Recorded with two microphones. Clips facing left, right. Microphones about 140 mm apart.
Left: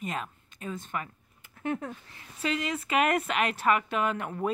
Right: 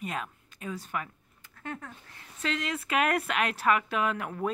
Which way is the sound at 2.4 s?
5° left (ahead or behind).